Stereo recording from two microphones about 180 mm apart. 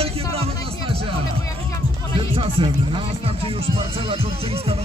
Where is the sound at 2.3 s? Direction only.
30° right (ahead or behind).